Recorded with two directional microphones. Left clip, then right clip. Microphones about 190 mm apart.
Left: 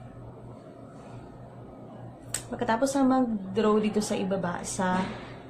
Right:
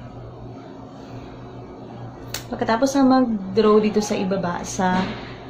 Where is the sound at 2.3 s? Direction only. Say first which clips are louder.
Right 6 dB; 5° left (ahead or behind).